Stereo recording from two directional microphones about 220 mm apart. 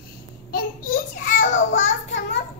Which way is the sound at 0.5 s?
40° left (ahead or behind).